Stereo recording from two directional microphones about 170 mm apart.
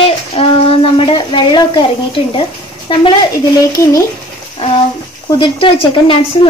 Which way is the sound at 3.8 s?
15° left (ahead or behind).